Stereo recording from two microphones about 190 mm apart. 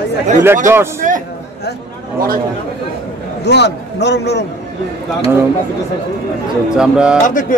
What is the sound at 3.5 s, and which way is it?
Speech, 65° left (ahead or behind).